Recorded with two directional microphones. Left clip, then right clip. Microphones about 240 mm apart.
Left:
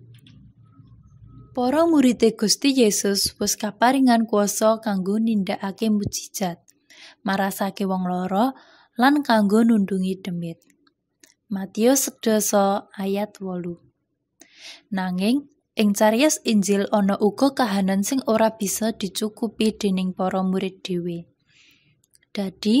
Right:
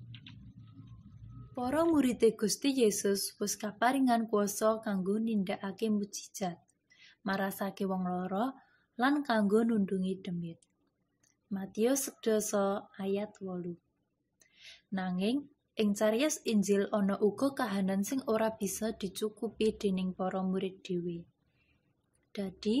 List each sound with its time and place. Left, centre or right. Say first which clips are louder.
1.5 s a woman's voice: left 11 dB; left
22.3 s a woman's voice: left 10 dB; left